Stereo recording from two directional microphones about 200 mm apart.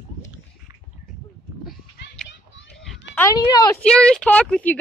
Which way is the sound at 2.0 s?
65° left (ahead or behind).